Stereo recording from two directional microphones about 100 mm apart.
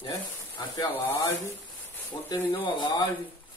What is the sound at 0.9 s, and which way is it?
Speech, 20° left (ahead or behind).